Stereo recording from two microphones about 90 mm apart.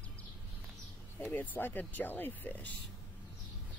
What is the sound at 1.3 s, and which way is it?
Speech, 20° left (ahead or behind).